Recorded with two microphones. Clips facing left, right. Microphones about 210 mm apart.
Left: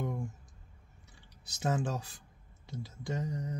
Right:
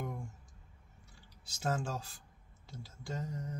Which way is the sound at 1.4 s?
20° left (ahead or behind).